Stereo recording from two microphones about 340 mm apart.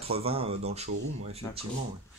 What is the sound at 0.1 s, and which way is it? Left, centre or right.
Speech, centre.